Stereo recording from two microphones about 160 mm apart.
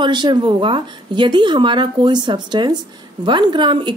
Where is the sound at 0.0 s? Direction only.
30° right (ahead or behind).